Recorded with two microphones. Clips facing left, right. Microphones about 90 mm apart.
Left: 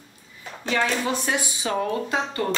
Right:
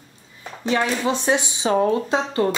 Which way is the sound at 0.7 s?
20° right (ahead or behind).